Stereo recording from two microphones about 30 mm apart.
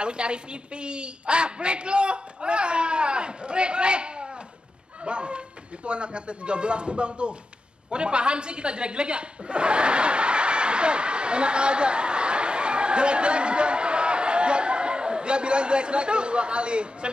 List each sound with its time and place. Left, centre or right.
0.0 s a woman's voice: right